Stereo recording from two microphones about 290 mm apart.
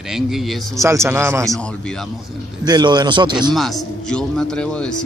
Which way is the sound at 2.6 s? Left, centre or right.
Centre.